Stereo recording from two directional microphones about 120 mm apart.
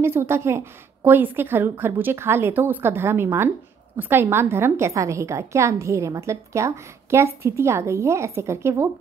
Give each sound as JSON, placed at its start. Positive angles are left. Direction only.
{"t": 0.0, "sound": "a woman's voice", "side_deg": -20}